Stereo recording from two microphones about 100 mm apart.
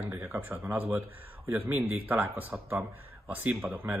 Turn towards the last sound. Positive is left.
turn(degrees=-20)  # may be behind; listen again after turning